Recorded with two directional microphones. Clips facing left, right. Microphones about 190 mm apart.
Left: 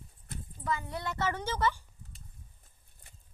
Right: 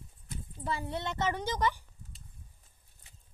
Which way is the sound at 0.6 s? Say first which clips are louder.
Even; 30° right (ahead or behind).